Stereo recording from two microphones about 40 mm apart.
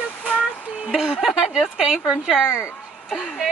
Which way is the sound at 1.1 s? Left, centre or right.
Centre.